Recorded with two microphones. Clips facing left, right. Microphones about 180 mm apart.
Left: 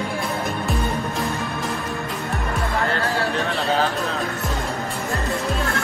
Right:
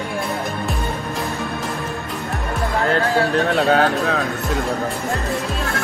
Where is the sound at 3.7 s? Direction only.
60° right (ahead or behind).